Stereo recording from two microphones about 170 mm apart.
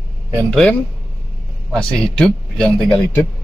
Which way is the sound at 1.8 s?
5° left (ahead or behind).